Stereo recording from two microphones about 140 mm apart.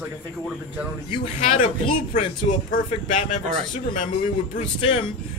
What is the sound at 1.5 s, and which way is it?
Speech, 65° left (ahead or behind).